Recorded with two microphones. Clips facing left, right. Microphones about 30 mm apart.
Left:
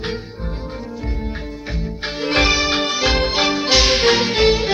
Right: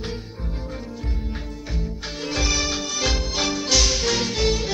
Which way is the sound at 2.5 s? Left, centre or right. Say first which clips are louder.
Left 7 dB; left.